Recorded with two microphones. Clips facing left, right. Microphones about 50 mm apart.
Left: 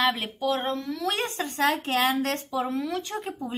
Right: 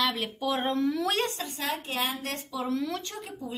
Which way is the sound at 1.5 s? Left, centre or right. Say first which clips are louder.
Left 9 dB; left.